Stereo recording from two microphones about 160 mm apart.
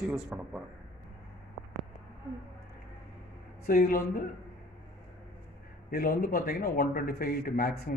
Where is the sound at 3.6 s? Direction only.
70° left (ahead or behind).